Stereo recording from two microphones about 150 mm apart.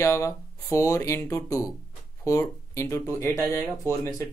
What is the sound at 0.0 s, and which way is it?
Speech, 20° left (ahead or behind).